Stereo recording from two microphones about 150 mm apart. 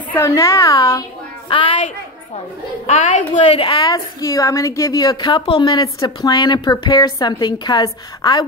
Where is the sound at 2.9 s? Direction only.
50° left (ahead or behind).